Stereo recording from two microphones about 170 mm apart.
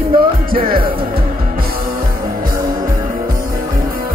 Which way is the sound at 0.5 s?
60° right (ahead or behind).